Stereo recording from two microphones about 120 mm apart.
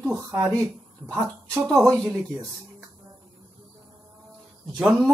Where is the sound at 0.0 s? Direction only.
15° right (ahead or behind).